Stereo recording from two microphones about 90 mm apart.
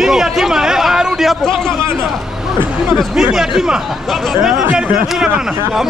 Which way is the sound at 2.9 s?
5° right (ahead or behind).